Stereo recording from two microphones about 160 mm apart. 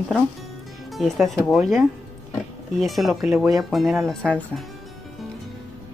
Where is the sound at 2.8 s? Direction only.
Centre (ahead or behind).